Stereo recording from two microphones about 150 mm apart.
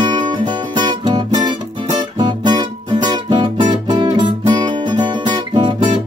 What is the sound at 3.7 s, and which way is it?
Music, 30° right (ahead or behind).